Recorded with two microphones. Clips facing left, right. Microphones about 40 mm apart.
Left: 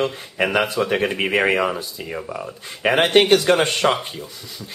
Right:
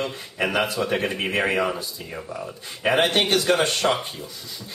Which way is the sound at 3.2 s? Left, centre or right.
Centre.